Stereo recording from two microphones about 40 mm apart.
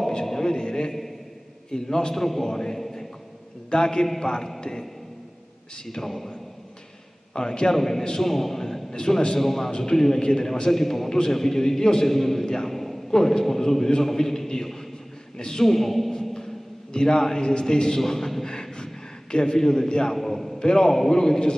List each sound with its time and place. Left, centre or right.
0.1 s a sound: centre
1.7 s a man's voice: centre
5.9 s a man's voice: centre
7.3 s a man's voice: centre
7.7 s a man's voice: centre
8.9 s a man's voice: centre
12.7 s a sound: centre
13.1 s a man's voice: centre
15.6 s a man's voice: centre
16.1 s a sound: centre
16.9 s a man's voice: centre
20.2 s a man's voice: centre
20.5 s a man's voice: centre